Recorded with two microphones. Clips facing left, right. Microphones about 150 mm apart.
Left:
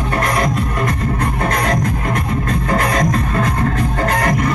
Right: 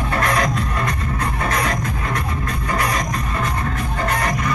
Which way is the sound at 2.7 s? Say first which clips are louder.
Left 6 dB; 55° left (ahead or behind).